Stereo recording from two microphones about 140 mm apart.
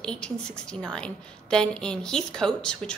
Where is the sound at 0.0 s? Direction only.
5° left (ahead or behind).